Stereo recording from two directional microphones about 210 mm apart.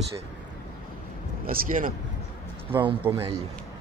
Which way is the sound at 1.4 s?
40° right (ahead or behind).